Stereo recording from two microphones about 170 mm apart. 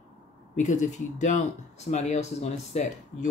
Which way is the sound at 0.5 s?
45° left (ahead or behind).